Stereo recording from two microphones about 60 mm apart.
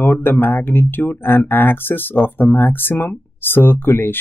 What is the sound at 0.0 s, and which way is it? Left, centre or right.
Speech, left.